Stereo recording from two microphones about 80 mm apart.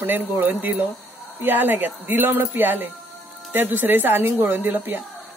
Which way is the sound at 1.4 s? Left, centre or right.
Right.